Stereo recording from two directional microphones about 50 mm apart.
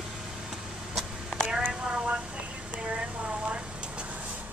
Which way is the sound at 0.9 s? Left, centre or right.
Centre.